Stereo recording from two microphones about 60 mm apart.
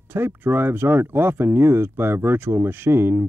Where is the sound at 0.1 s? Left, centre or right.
Right.